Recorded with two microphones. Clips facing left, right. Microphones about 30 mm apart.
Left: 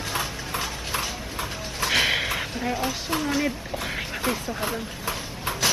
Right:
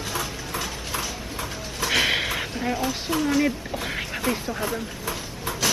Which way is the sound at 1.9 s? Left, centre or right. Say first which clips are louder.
Even; centre.